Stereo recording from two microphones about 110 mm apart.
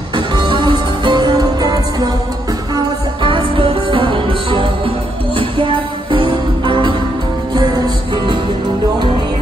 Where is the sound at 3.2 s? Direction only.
55° right (ahead or behind).